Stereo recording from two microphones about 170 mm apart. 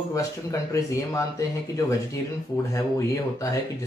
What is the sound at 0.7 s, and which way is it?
Speech, 20° left (ahead or behind).